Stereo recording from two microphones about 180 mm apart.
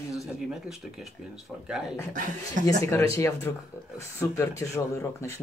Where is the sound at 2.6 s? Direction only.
15° left (ahead or behind).